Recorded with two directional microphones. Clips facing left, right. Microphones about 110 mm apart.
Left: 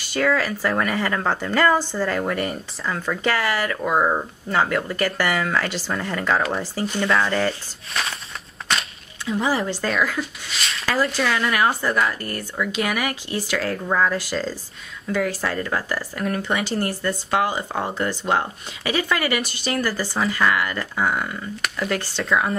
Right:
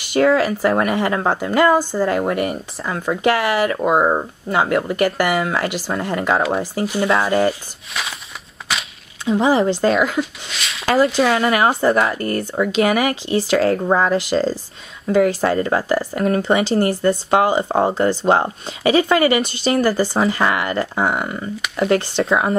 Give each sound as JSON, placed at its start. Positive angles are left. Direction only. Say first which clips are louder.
{"t": 0.0, "sound": "speech", "louder": "right 6 dB", "side_deg": -20}
{"t": 8.7, "sound": "a sound", "louder": "even", "side_deg": -5}
{"t": 9.2, "sound": "speech", "louder": "right 7 dB", "side_deg": -25}
{"t": 10.5, "sound": "a sound", "louder": "even", "side_deg": 0}
{"t": 10.9, "sound": "speech", "louder": "right 7 dB", "side_deg": -30}
{"t": 14.1, "sound": "speech", "louder": "right 7 dB", "side_deg": -20}
{"t": 15.0, "sound": "speech", "louder": "right 8 dB", "side_deg": -30}